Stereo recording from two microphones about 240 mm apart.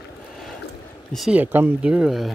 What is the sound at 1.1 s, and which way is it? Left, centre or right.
Speech, centre.